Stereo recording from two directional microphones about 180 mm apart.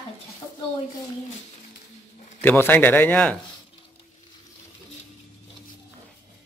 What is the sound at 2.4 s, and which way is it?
Speech, 10° left (ahead or behind).